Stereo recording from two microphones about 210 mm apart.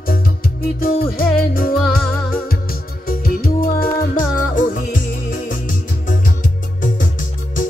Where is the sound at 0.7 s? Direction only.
45° left (ahead or behind).